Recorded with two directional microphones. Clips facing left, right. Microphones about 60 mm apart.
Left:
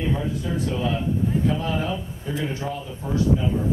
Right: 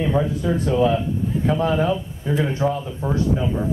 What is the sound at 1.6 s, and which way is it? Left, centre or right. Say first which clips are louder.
Speech: right 6 dB; right.